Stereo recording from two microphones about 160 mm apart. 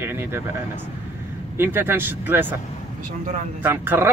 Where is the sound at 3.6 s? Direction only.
15° right (ahead or behind).